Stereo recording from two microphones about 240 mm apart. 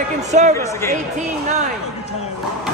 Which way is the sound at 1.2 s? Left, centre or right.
Right.